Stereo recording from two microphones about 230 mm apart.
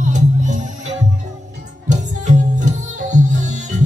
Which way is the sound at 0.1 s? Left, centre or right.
Right.